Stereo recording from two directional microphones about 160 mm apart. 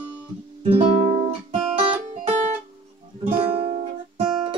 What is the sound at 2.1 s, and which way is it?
Music, 50° right (ahead or behind).